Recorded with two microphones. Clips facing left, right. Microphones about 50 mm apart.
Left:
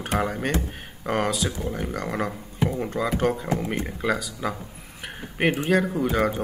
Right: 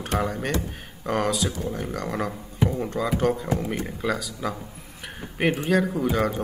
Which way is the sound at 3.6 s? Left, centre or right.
Centre.